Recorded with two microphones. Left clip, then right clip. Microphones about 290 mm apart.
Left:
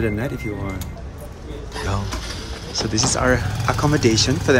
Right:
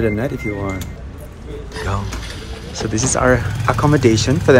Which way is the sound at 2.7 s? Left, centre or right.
Centre.